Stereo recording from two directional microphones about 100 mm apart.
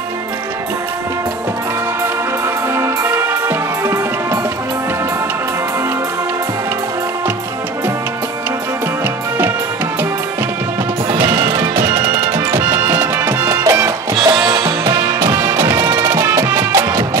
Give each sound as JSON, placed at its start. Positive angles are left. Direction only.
{"t": 2.7, "sound": "music", "side_deg": -25}
{"t": 11.1, "sound": "music", "side_deg": -45}
{"t": 12.4, "sound": "music", "side_deg": -25}
{"t": 14.2, "sound": "music", "side_deg": -45}